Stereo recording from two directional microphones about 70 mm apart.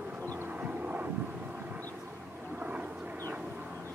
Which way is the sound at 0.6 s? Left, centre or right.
Right.